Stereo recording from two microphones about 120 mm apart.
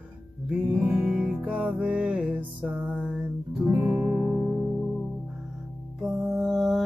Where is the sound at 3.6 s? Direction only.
20° right (ahead or behind).